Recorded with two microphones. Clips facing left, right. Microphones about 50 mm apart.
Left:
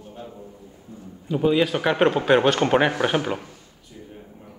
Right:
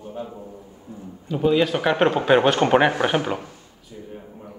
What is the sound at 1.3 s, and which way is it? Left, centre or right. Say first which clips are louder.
Speech: right 1 dB; centre.